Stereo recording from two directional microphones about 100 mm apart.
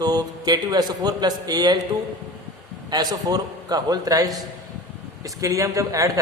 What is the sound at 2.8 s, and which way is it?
A man's voice, 45° right (ahead or behind).